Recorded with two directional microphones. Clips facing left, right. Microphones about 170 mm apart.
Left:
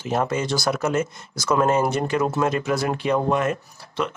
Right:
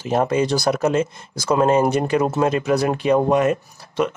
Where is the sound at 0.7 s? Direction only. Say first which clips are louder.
Right 1 dB; 30° right (ahead or behind).